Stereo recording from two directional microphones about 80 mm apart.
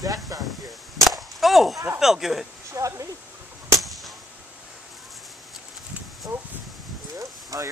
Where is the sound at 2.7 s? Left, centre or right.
Right.